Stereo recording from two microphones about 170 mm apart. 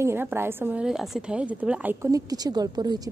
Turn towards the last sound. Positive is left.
turn(degrees=-25)  # may be behind; listen again after turning